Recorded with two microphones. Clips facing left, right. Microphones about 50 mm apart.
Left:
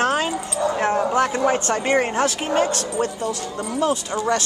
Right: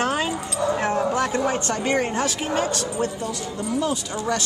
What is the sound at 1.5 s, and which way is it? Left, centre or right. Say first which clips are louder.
Speech: left 3 dB; left.